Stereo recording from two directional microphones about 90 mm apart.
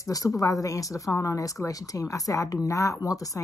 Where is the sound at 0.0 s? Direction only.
40° left (ahead or behind).